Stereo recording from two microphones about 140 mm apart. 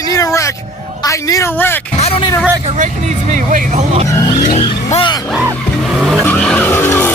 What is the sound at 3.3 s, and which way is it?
Speech, 60° right (ahead or behind).